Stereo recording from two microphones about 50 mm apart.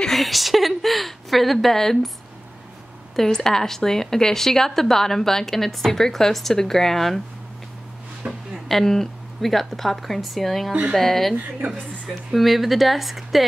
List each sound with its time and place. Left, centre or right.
0.1 s a woman's voice: centre
3.2 s speech: centre
8.3 s a woman's voice: centre
11.3 s speech: right
12.3 s a woman's voice: centre